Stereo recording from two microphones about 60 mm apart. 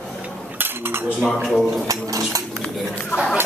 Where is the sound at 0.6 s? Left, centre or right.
Right.